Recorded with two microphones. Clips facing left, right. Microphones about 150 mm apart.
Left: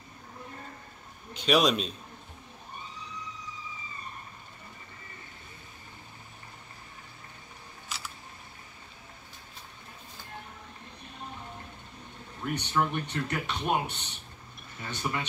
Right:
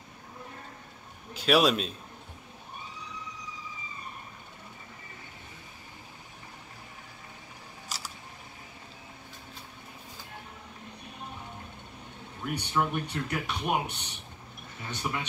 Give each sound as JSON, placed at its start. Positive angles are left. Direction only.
{"t": 1.3, "sound": "a man's voice", "side_deg": -5}
{"t": 7.9, "sound": "single-lens reflex camera", "side_deg": -40}
{"t": 12.4, "sound": "speech", "side_deg": -5}